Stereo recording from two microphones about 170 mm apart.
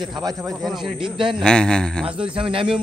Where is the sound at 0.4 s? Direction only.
Centre (ahead or behind).